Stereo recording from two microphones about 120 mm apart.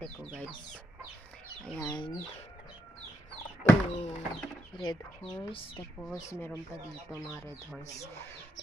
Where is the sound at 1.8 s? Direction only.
35° left (ahead or behind).